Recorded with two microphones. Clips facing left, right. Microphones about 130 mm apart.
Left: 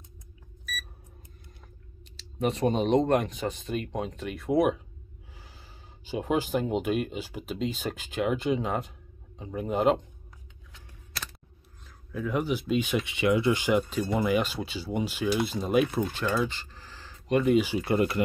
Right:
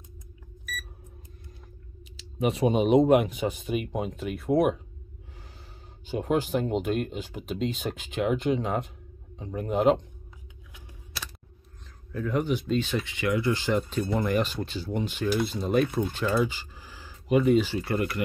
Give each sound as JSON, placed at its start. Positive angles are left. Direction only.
{"t": 2.1, "sound": "speech", "side_deg": -5}
{"t": 6.0, "sound": "speech", "side_deg": 0}
{"t": 12.1, "sound": "speech", "side_deg": 5}
{"t": 17.6, "sound": "speech", "side_deg": 10}
{"t": 17.8, "sound": "speech", "side_deg": 25}